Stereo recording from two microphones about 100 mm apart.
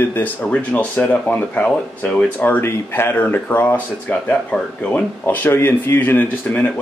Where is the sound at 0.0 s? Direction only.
20° left (ahead or behind).